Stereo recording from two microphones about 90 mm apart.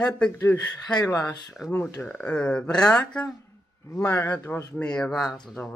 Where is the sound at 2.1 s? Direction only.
15° left (ahead or behind).